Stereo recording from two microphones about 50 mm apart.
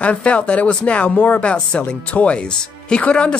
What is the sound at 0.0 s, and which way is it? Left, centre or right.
Speech, left.